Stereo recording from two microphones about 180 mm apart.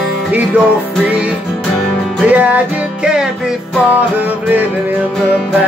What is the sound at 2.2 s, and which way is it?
Music, 10° right (ahead or behind).